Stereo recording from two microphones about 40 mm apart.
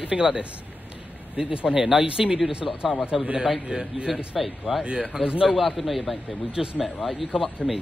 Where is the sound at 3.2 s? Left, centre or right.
Right.